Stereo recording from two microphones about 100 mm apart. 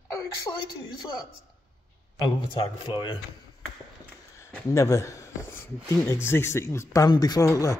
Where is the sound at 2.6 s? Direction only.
55° left (ahead or behind).